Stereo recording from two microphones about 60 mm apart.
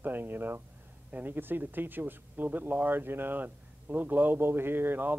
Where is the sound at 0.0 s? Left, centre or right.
Right.